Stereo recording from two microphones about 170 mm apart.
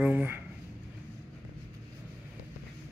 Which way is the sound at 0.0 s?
10° right (ahead or behind).